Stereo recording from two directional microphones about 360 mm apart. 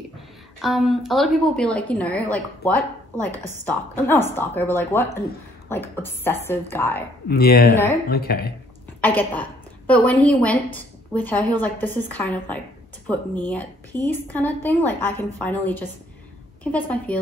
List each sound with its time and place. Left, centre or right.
0.6 s a woman's voice: centre
7.2 s speech: left
7.7 s speech: centre
8.1 s speech: left
9.0 s a woman's voice: centre